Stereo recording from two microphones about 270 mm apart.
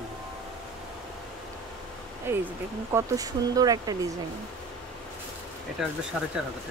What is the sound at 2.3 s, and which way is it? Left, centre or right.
Speech, centre.